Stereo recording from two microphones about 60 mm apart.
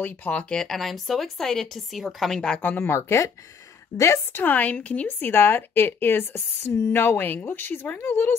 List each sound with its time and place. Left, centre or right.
0.0 s a woman's voice: left
0.5 s speech: centre
2.8 s speech: left
4.4 s a woman's voice: left
5.2 s a woman's voice: left
8.0 s speech: left